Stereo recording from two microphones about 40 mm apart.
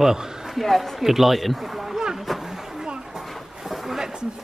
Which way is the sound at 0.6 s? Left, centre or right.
Centre.